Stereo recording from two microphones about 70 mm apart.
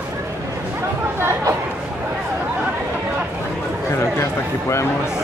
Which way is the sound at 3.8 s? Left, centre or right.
Left.